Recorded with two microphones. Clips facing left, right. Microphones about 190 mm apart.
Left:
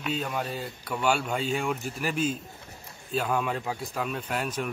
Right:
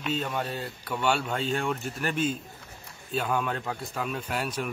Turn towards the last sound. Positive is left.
turn(degrees=0)  # may be behind; listen again after turning